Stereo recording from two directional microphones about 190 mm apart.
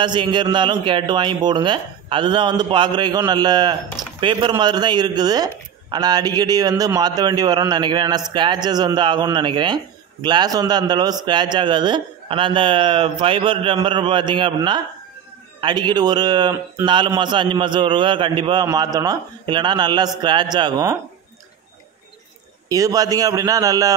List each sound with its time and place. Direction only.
0.0 s a man's voice: 25° right (ahead or behind)
22.7 s a man's voice: 20° right (ahead or behind)